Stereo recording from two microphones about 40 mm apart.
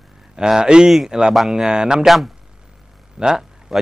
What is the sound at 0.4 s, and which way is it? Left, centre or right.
Speech, centre.